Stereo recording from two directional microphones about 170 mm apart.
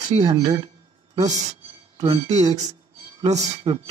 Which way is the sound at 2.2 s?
40° right (ahead or behind).